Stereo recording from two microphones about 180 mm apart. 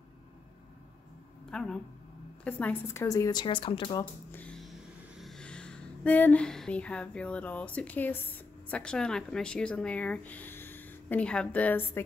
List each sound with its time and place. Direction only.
1.5 s speech: 5° left (ahead or behind); by 4.0 s 25° left (ahead or behind)
4.0 s speech: 10° left (ahead or behind)